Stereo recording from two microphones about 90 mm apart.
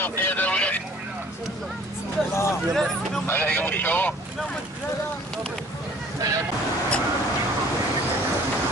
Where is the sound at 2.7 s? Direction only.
5° left (ahead or behind).